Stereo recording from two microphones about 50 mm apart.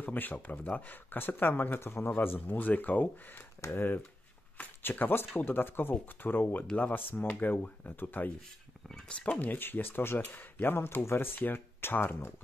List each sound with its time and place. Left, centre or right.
0.0 s speech: left
9.0 s speech: left
9.4 s speech: left